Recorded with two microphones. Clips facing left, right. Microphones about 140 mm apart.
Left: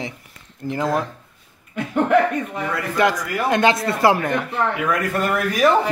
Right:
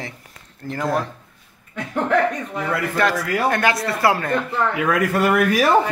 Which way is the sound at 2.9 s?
15° left (ahead or behind).